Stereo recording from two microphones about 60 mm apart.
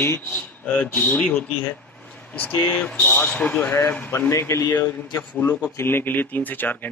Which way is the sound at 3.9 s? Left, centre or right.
Left.